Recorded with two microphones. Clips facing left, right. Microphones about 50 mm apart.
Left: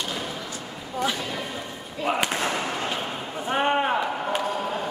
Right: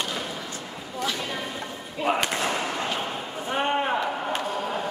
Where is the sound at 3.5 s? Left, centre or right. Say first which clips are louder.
Left 2 dB; centre.